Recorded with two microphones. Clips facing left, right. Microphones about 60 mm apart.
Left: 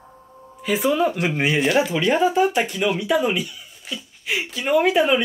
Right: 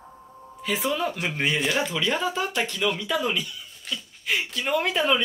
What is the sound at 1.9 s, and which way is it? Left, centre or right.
Speech, left.